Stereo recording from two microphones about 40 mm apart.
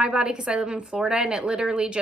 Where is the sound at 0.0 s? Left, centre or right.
Right.